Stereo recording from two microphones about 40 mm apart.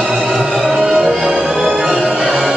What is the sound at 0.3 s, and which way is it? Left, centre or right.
Music, centre.